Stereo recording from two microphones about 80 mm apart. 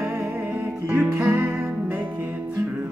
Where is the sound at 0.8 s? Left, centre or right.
Right.